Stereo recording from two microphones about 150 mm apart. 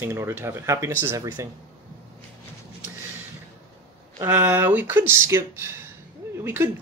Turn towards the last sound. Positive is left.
turn(degrees=-15)  # may be behind; listen again after turning